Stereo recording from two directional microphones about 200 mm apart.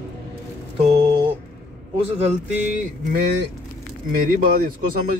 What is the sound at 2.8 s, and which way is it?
Speech, 50° right (ahead or behind).